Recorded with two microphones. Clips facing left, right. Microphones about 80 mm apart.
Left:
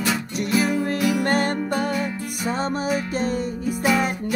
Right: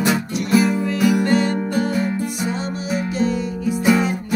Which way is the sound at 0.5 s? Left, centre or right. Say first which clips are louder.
Right 5 dB; right.